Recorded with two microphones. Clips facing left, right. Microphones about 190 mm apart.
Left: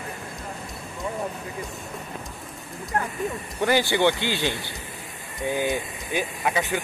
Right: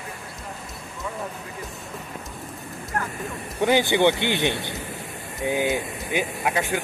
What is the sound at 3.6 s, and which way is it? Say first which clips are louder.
Speech: right 2 dB; 20° right (ahead or behind).